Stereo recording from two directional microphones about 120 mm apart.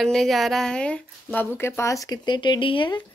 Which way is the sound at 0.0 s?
5° left (ahead or behind).